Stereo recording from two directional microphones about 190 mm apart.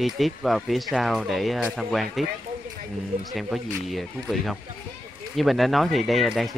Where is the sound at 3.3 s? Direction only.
Centre (ahead or behind).